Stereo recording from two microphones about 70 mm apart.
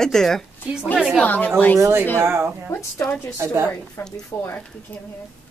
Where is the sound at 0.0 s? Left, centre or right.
Centre.